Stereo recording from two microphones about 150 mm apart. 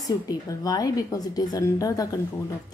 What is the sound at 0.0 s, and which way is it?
A woman's voice, 25° left (ahead or behind).